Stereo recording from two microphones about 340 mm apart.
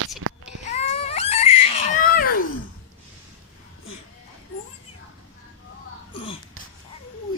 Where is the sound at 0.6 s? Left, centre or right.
Centre.